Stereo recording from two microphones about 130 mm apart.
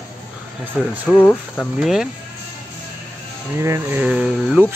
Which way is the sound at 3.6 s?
20° right (ahead or behind).